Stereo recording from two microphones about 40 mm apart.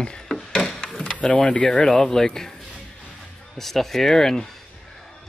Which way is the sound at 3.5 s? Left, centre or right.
Centre.